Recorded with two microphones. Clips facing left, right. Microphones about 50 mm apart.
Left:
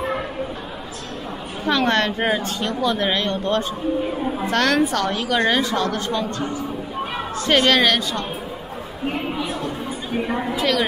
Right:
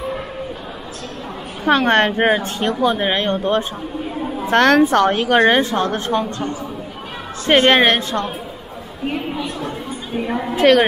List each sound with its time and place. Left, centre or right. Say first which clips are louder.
1.6 s a woman's voice: right 5 dB; right
4.5 s a woman's voice: right 7 dB; right
7.4 s a woman's voice: right 4 dB; right
10.1 s a woman's voice: right 2 dB; centre
10.5 s a woman's voice: right 10 dB; right